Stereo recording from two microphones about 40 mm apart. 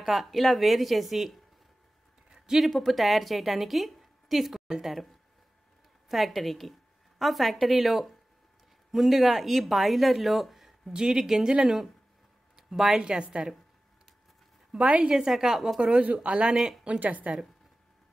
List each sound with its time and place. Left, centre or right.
0.0 s speech: centre
2.3 s a sound: centre
2.6 s a woman's voice: centre
6.0 s speech: centre
10.9 s speech: centre
14.7 s a woman's voice: right
15.1 s speech: centre
15.8 s speech: right
17.0 s speech: right